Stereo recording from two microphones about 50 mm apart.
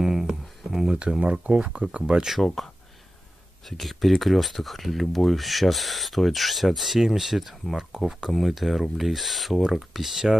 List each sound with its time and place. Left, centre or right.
0.0 s a sound: centre
1.2 s speech: right
2.4 s speech: centre
9.6 s speech: centre